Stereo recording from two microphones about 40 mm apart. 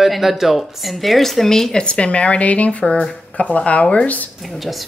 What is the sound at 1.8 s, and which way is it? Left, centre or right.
Speech, left.